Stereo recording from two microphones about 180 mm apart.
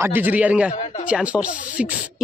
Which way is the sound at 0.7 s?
40° left (ahead or behind).